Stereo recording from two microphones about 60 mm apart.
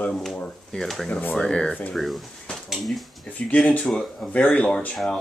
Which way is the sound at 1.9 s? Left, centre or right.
Centre.